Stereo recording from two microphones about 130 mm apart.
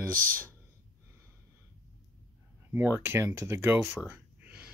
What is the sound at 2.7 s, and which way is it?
Speech, 15° right (ahead or behind).